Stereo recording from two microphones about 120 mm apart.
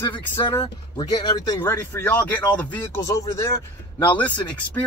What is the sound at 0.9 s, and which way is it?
Speech, 35° left (ahead or behind).